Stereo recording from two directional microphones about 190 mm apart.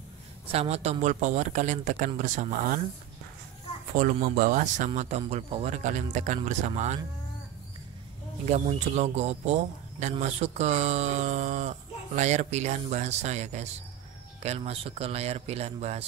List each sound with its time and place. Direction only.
0.5 s speech: 35° right (ahead or behind)
3.9 s speech: 45° right (ahead or behind)
8.5 s speech: 35° right (ahead or behind)